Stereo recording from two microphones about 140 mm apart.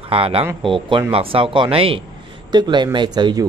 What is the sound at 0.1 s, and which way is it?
Speech, 40° right (ahead or behind).